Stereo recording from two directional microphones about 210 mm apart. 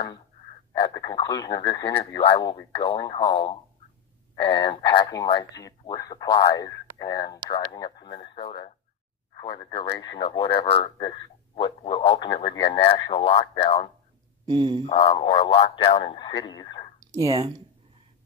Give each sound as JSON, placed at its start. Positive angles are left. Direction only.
{"t": 0.9, "sound": "speech", "side_deg": 20}
{"t": 14.4, "sound": "speech", "side_deg": -20}
{"t": 14.9, "sound": "speech", "side_deg": 25}
{"t": 17.1, "sound": "speech", "side_deg": -15}